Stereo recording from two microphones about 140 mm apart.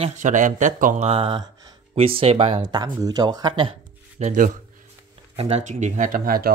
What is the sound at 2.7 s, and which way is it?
Speech, 30° right (ahead or behind).